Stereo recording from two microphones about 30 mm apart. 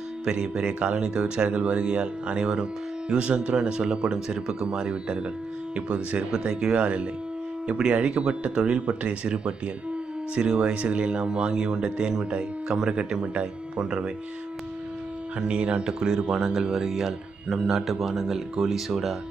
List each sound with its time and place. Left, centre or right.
0.2 s speech: right
6.3 s speech: right
6.8 s speech: right
15.4 s speech: right
16.3 s speech: centre
17.8 s speech: centre